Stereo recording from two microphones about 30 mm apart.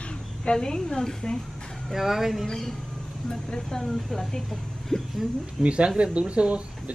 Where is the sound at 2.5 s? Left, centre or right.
Centre.